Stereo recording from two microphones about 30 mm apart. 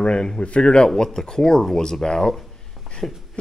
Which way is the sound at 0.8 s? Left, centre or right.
Centre.